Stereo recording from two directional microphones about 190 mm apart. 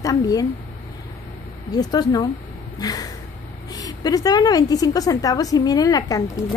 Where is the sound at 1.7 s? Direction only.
20° left (ahead or behind).